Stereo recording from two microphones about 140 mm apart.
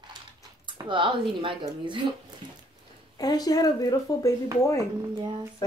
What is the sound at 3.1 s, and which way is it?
Speech, 25° left (ahead or behind).